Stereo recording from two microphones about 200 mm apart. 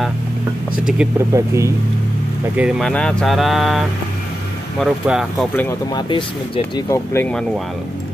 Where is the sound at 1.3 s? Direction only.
15° right (ahead or behind).